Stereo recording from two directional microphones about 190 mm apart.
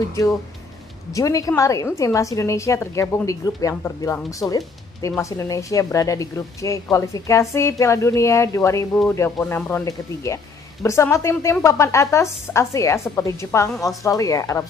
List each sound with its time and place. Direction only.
1.1 s a woman's voice: 20° left (ahead or behind)